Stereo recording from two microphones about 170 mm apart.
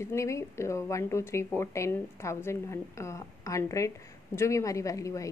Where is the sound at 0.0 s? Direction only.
15° left (ahead or behind).